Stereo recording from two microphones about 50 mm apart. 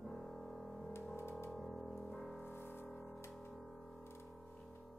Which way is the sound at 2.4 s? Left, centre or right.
Left.